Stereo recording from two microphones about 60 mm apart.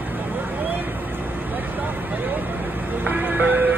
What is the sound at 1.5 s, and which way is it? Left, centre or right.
Music, right.